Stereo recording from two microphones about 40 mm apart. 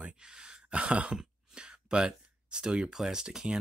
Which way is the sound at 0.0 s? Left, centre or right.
Right.